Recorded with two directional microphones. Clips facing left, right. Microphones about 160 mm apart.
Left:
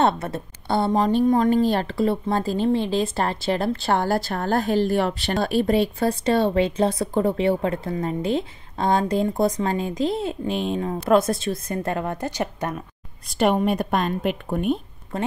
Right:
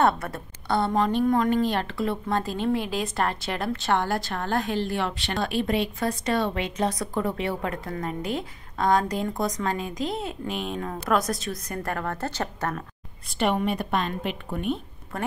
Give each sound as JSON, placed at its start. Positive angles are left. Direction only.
{"t": 0.0, "sound": "a woman's voice", "side_deg": 25}
{"t": 13.3, "sound": "a woman's voice", "side_deg": 40}
{"t": 15.1, "sound": "speech", "side_deg": 25}